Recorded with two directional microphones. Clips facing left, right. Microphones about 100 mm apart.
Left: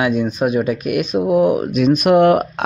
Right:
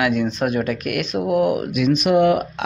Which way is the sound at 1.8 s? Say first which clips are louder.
Left 4 dB; 50° left (ahead or behind).